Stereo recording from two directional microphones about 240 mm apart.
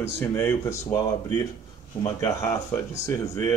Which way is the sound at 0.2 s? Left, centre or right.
Centre.